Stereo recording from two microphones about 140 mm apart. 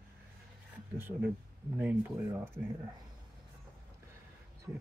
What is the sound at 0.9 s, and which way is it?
Speech, 15° right (ahead or behind).